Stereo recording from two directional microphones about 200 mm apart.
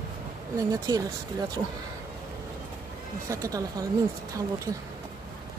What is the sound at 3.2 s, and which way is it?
Speech, 15° right (ahead or behind).